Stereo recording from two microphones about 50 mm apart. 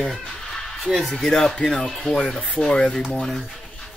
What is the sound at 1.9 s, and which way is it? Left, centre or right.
Speech, centre.